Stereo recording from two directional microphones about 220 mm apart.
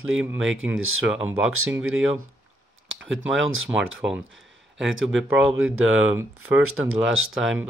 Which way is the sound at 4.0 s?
5° right (ahead or behind).